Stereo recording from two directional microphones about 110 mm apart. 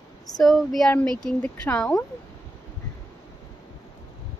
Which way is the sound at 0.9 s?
10° left (ahead or behind).